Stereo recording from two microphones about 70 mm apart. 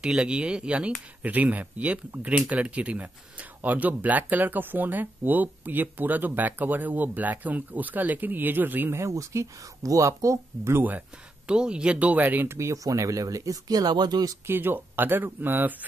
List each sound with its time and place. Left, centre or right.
0.0 s speech: centre; by 8.9 s right
8.9 s speech: right
10.8 s speech: right
11.5 s speech: centre
12.4 s speech: right
14.4 s speech: right